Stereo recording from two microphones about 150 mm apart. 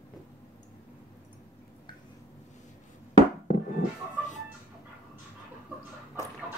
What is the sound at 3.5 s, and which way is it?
Music, 55° left (ahead or behind).